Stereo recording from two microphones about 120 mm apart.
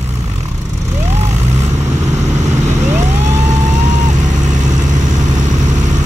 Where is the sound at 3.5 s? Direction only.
90° right.